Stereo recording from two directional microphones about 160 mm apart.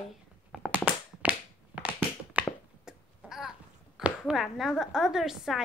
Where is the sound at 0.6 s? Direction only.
10° right (ahead or behind).